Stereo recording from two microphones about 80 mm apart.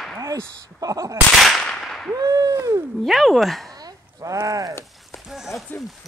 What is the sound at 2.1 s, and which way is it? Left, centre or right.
Speech, right.